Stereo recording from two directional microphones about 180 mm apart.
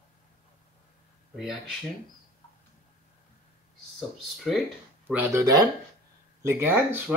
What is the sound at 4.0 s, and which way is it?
Speech, centre (ahead or behind).